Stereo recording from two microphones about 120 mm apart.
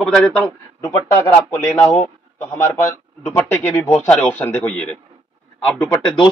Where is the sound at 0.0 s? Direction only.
5° left (ahead or behind).